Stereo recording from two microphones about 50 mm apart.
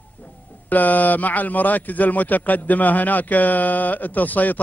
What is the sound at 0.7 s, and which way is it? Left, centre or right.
A man's voice, left.